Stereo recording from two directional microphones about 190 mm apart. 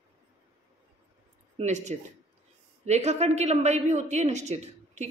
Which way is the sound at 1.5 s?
40° right (ahead or behind).